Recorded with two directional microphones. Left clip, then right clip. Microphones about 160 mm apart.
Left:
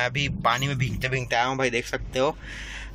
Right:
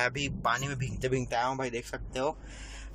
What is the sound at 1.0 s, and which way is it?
Speech, 15° right (ahead or behind).